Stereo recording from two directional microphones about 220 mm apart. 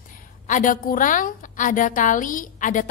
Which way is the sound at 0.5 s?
35° left (ahead or behind).